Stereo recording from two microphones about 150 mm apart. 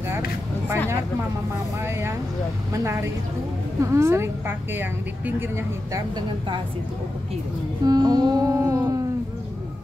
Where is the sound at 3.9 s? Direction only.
15° right (ahead or behind).